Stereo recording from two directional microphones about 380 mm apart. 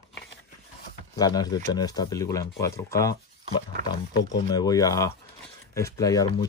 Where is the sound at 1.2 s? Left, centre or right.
Centre.